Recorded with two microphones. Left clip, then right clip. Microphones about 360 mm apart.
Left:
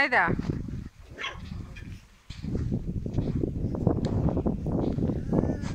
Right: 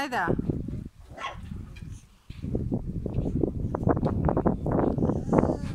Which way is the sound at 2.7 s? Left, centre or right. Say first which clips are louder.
Right 1 dB; right.